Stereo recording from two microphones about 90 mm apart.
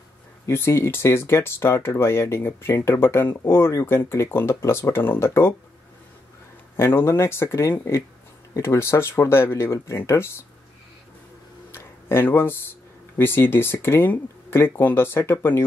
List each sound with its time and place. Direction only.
0.5 s speech: 30° left (ahead or behind)
6.8 s speech: 25° left (ahead or behind)
11.7 s tick-tock: 25° left (ahead or behind)
13.2 s speech: 25° left (ahead or behind)